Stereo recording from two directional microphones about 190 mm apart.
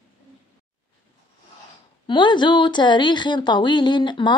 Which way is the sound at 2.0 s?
25° left (ahead or behind).